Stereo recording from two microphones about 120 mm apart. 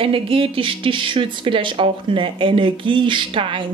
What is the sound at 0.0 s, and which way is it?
Speech, 50° right (ahead or behind).